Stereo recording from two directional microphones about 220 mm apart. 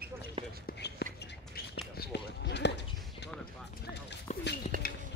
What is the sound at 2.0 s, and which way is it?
Basketball bounce, 50° left (ahead or behind).